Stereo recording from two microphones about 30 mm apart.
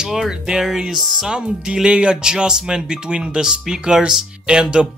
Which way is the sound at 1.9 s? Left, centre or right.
Right.